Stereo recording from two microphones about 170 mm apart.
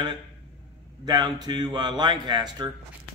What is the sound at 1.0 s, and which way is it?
Speech, 25° right (ahead or behind).